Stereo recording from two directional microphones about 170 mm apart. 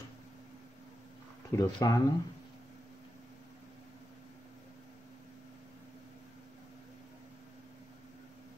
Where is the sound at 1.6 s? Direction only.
25° left (ahead or behind).